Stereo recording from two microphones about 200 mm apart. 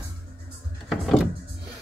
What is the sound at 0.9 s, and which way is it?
Door, centre (ahead or behind).